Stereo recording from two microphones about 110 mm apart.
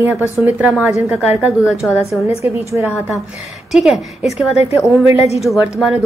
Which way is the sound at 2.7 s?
25° right (ahead or behind).